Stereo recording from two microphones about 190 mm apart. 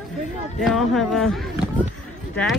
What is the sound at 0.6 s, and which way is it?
Speech, centre (ahead or behind).